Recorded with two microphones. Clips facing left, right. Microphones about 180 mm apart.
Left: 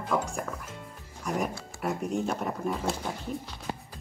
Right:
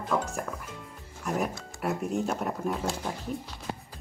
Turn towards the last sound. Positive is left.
turn(degrees=-5)  # may be behind; listen again after turning